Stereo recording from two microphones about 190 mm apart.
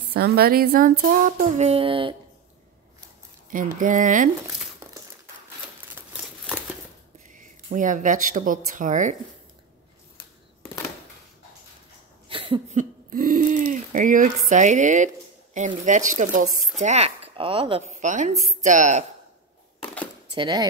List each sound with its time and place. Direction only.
0.1 s female singing: 55° right (ahead or behind); by 2.1 s 30° right (ahead or behind)
3.8 s female singing: 45° right (ahead or behind)
7.2 s speech: 40° right (ahead or behind)
12.3 s a sound: 25° right (ahead or behind)
12.7 s a sound: 45° right (ahead or behind)
14.5 s speech: 40° right (ahead or behind)
20.3 s speech: 25° right (ahead or behind)